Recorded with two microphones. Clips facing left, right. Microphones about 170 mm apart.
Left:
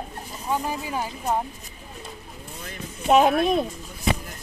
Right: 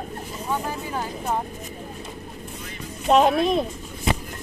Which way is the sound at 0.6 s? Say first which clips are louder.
Left 1 dB; 10° left (ahead or behind).